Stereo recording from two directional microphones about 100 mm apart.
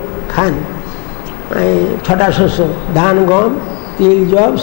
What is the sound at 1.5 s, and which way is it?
A man's voice, 25° left (ahead or behind).